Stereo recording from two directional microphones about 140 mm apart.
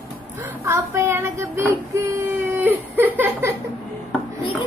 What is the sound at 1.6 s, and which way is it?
Baby cry, 20° right (ahead or behind).